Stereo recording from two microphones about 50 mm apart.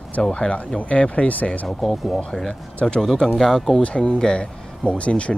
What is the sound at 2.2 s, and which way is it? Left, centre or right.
Speech, centre.